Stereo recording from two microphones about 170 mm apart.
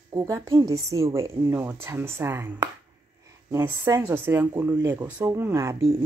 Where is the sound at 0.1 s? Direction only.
15° right (ahead or behind).